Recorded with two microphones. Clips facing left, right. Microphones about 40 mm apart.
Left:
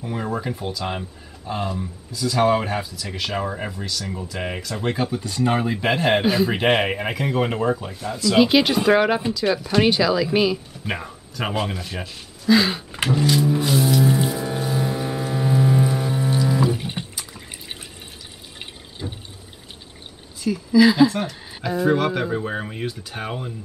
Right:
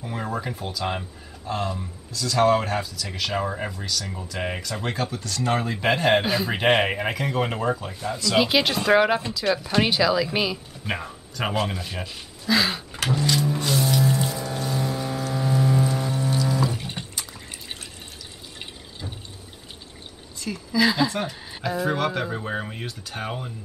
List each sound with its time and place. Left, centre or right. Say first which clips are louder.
0.0 s speech: left 3 dB; centre
4.9 s speech: left 4 dB; centre
13.2 s music: left 5 dB; centre
14.1 s a sound: left 4 dB; centre
17.1 s liquid: even; centre
19.0 s fill: left 5 dB; centre
20.3 s speech: left 7 dB; centre